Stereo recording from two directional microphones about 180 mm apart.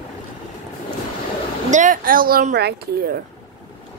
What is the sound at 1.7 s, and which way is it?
Speech, 45° right (ahead or behind).